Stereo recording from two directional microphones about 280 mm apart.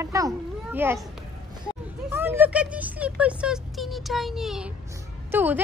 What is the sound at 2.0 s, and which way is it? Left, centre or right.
A woman's voice, centre.